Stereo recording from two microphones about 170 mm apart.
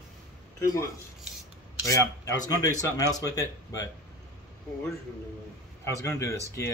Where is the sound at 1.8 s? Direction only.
20° left (ahead or behind).